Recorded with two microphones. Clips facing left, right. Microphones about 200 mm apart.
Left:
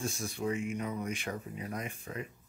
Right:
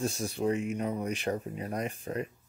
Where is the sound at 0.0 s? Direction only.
35° right (ahead or behind).